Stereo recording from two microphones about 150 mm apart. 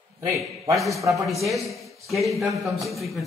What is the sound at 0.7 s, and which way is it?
A man's voice, centre (ahead or behind).